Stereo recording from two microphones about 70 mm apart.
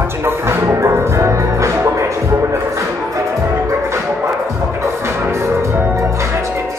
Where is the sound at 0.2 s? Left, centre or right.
Right.